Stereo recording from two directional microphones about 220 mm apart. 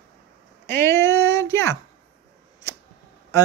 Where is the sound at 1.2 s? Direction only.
15° left (ahead or behind).